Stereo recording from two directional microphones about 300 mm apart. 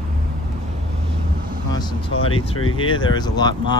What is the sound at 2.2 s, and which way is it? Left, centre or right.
Speech, centre.